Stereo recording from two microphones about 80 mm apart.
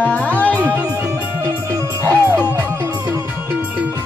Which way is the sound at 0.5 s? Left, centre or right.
Right.